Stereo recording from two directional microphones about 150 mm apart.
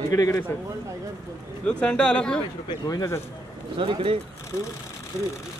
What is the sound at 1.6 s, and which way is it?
Speech, 5° left (ahead or behind).